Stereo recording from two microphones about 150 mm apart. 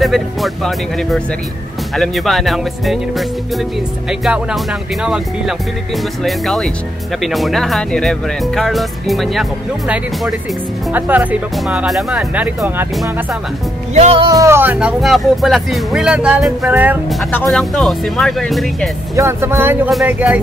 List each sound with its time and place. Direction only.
0.0 s speech: centre (ahead or behind)
6.2 s speech: centre (ahead or behind)
10.9 s speech: 10° right (ahead or behind)
13.9 s music: 45° right (ahead or behind)
14.2 s speech: 20° right (ahead or behind)
17.5 s speech: centre (ahead or behind)
19.1 s speech: 15° right (ahead or behind)